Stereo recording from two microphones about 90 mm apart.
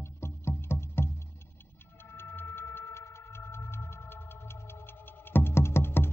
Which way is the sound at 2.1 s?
25° left (ahead or behind).